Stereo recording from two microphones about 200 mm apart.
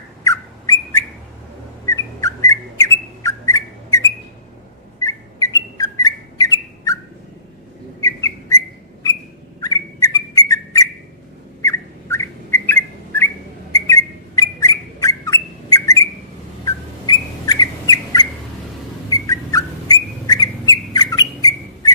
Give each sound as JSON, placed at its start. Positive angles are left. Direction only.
{"t": 0.2, "sound": "bird", "side_deg": 15}
{"t": 5.0, "sound": "bird", "side_deg": 15}
{"t": 8.0, "sound": "whistle", "side_deg": 15}
{"t": 11.6, "sound": "bird", "side_deg": 15}
{"t": 19.0, "sound": "whistle", "side_deg": 15}